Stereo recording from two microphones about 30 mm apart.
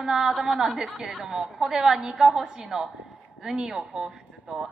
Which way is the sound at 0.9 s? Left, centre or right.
Right.